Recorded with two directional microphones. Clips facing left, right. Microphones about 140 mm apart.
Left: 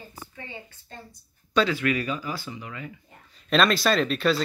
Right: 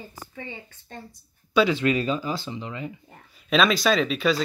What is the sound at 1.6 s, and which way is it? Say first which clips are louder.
Speech: right 3 dB; 25° right (ahead or behind).